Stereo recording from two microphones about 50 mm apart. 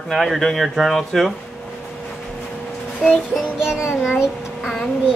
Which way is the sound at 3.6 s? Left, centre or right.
Centre.